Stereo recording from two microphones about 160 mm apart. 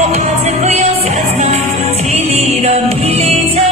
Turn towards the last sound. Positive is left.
turn(degrees=-40)  # may be behind; listen again after turning